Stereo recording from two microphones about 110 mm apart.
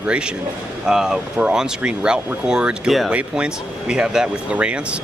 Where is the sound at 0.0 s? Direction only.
10° right (ahead or behind).